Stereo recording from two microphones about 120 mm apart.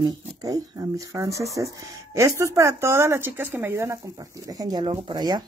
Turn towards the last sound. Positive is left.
turn(degrees=-35)  # may be behind; listen again after turning